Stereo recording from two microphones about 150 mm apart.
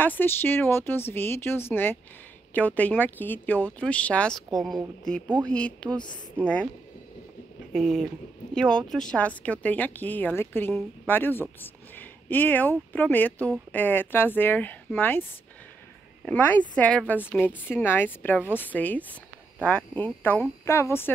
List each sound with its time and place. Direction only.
0.0 s speech: 15° left (ahead or behind)
7.7 s speech: centre (ahead or behind)
16.3 s speech: 10° left (ahead or behind)